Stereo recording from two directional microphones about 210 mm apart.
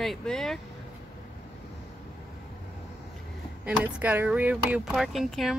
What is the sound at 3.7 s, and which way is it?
Speech, 5° right (ahead or behind).